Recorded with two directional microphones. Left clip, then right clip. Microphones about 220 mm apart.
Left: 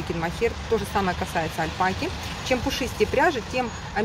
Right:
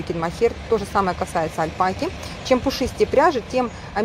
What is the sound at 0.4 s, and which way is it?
Speech, 15° right (ahead or behind).